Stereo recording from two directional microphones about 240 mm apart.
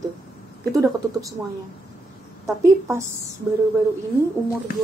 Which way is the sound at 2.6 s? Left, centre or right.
Centre.